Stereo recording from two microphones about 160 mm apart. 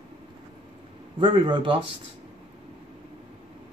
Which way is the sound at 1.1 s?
30° right (ahead or behind).